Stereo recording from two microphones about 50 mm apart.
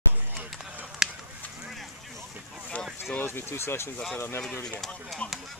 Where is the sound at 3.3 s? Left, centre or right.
Left.